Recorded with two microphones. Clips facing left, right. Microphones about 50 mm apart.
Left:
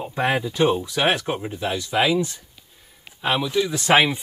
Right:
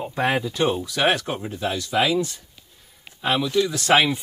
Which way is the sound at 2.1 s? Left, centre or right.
Centre.